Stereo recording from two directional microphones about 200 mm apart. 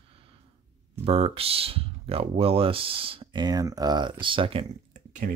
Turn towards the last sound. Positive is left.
turn(degrees=-40)  # may be behind; listen again after turning